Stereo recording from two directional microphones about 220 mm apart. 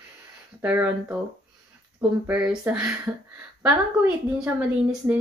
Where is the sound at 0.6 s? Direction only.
10° right (ahead or behind).